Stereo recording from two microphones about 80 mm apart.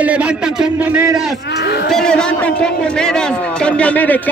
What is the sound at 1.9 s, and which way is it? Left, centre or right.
A man's voice, centre.